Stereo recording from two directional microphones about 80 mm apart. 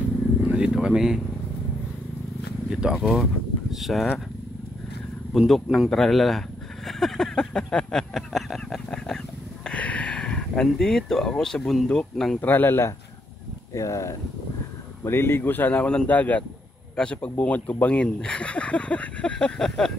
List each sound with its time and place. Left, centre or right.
0.6 s vehicle: centre
2.7 s speech: centre
5.5 s speech: centre
6.9 s a sound: centre
9.7 s a sound: centre
10.7 s speech: centre
12.4 s speech: left
13.7 s speech: left
15.0 s speech: left; by 19.9 s centre